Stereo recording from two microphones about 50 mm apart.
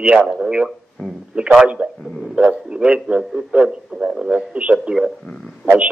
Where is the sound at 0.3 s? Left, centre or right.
Right.